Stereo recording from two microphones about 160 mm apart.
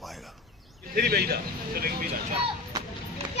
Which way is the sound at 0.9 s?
75° right (ahead or behind).